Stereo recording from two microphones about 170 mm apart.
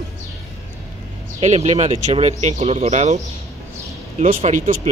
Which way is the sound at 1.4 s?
40° right (ahead or behind).